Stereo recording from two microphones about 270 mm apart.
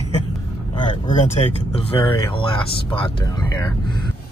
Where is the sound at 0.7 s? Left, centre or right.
Left.